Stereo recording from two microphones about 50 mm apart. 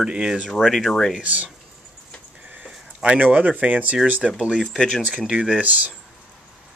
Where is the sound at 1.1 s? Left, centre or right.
Right.